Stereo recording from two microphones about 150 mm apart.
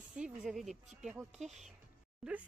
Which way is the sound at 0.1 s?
5° right (ahead or behind).